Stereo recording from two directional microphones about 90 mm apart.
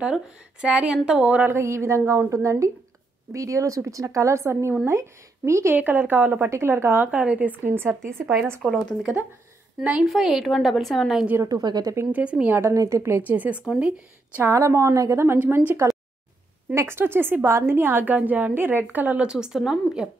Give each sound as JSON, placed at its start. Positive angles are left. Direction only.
{"t": 0.0, "sound": "speech", "side_deg": -10}
{"t": 1.5, "sound": "a woman's voice", "side_deg": -30}
{"t": 5.8, "sound": "a woman's voice", "side_deg": -20}
{"t": 6.5, "sound": "a woman's voice", "side_deg": -30}
{"t": 7.1, "sound": "a woman's voice", "side_deg": -15}
{"t": 8.2, "sound": "speech", "side_deg": 0}
{"t": 10.1, "sound": "speech", "side_deg": -5}
{"t": 11.3, "sound": "a woman's voice", "side_deg": -40}
{"t": 11.6, "sound": "speech", "side_deg": -50}
{"t": 12.1, "sound": "speech", "side_deg": -15}
{"t": 12.7, "sound": "a woman's voice", "side_deg": -35}
{"t": 13.2, "sound": "a woman's voice", "side_deg": -20}
{"t": 14.4, "sound": "a woman's voice", "side_deg": -35}
{"t": 15.3, "sound": "a woman's voice", "side_deg": -20}